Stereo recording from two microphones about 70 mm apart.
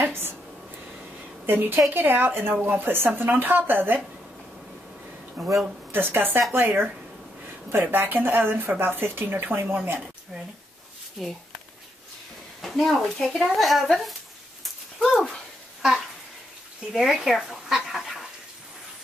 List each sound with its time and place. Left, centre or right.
0.0 s a sound: right
1.4 s a woman's voice: right
5.4 s speech: centre
5.9 s speech: right
11.2 s speech: centre
12.6 s speech: centre
15.0 s a sound: centre
16.9 s speech: centre